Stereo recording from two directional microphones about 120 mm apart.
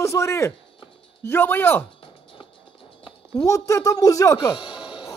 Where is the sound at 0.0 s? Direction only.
25° left (ahead or behind).